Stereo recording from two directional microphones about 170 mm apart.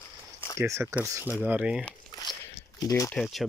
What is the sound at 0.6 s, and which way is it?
Speech, 15° right (ahead or behind).